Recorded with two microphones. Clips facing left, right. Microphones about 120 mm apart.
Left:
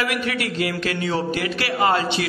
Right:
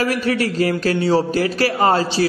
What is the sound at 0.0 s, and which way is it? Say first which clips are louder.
A man's voice: right 5 dB; 35° right (ahead or behind).